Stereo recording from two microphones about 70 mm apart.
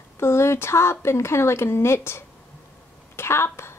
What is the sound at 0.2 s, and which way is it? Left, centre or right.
A woman's voice, left.